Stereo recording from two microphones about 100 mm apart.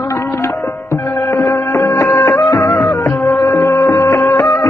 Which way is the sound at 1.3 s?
5° left (ahead or behind).